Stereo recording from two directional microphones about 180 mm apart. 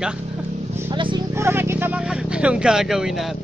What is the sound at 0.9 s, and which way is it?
Speech, 25° right (ahead or behind).